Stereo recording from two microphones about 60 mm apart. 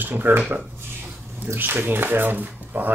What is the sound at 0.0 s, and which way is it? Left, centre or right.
Speech, right.